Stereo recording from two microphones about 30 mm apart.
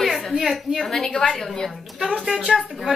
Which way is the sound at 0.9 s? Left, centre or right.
Centre.